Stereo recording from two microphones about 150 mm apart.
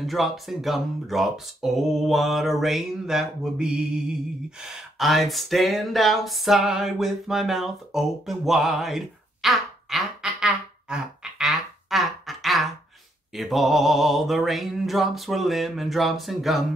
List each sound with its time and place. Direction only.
0.0 s speech: centre (ahead or behind)
13.3 s mantra: centre (ahead or behind)